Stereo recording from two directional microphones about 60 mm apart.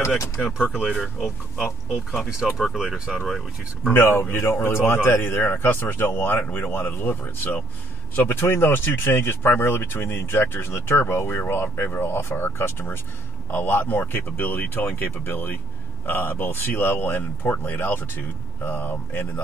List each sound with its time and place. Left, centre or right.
0.4 s speech: centre
2.3 s speech: centre
3.9 s speech: left